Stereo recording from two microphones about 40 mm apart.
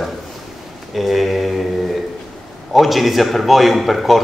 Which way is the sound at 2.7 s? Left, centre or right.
Centre.